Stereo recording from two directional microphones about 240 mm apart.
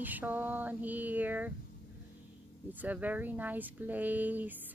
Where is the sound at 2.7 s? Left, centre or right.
Centre.